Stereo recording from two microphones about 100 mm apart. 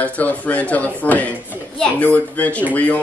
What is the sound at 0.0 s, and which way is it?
A woman's voice, 15° left (ahead or behind).